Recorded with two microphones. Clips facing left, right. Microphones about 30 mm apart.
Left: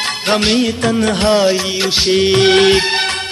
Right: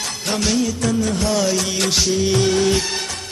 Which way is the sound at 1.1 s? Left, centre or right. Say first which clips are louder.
Left 7 dB; left.